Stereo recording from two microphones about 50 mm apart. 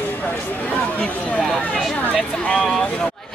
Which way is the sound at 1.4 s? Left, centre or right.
Centre.